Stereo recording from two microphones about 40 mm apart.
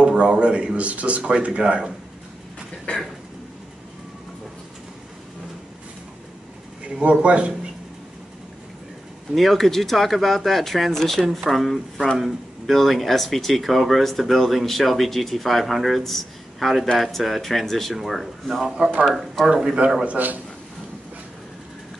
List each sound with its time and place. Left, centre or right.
0.0 s a man's voice: right
2.9 s a sound: left
7.0 s a man's voice: right
9.3 s speech: centre
18.8 s speech: right
19.4 s speech: centre
20.1 s a man's voice: right